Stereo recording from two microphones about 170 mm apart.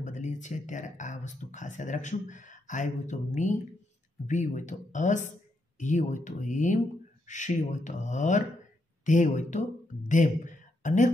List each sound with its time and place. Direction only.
0.0 s a man's voice: 45° left (ahead or behind)